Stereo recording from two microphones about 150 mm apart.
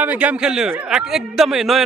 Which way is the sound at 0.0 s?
10° right (ahead or behind).